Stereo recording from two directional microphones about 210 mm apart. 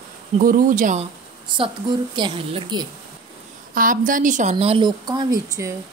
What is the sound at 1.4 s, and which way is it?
A woman's voice, 25° right (ahead or behind).